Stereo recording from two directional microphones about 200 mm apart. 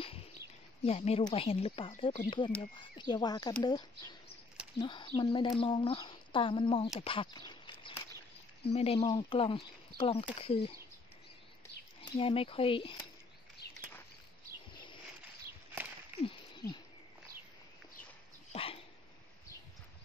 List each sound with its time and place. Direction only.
0.8 s speech: 30° left (ahead or behind)
12.0 s speech: 25° left (ahead or behind)
16.3 s a sound: 25° left (ahead or behind)
18.5 s dog: 30° left (ahead or behind)